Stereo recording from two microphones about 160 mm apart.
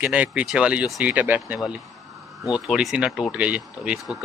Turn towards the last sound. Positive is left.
turn(degrees=-5)  # may be behind; listen again after turning